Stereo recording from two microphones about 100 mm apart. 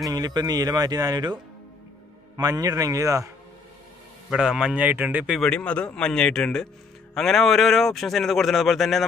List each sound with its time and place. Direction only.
0.1 s speech: 40° right (ahead or behind)
2.3 s speech: 35° right (ahead or behind)
4.3 s speech: 5° right (ahead or behind)
5.4 s a man's voice: 10° left (ahead or behind)